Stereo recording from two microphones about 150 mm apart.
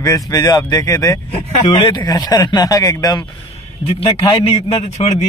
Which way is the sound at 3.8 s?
40° left (ahead or behind).